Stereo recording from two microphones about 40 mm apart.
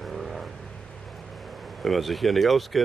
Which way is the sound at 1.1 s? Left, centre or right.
Centre.